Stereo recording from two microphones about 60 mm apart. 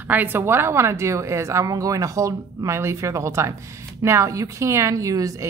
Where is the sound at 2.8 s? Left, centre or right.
Right.